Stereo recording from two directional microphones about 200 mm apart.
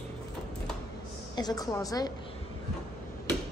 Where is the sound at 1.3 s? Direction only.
20° left (ahead or behind).